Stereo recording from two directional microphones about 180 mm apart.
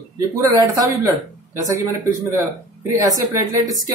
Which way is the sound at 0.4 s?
20° right (ahead or behind).